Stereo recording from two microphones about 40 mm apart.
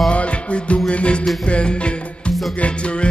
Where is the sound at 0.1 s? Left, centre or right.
Left.